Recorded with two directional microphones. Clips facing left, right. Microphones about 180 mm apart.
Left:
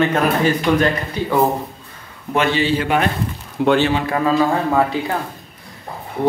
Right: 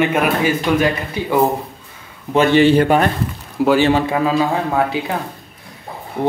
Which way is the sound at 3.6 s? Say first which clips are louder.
Right 2 dB; 10° right (ahead or behind).